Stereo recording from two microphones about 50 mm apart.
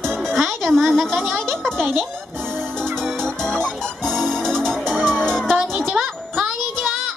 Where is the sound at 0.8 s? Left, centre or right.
Centre.